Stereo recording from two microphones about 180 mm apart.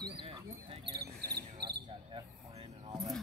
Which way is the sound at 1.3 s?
65° right (ahead or behind).